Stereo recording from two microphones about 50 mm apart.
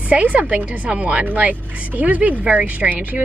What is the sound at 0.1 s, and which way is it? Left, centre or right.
Speech, right.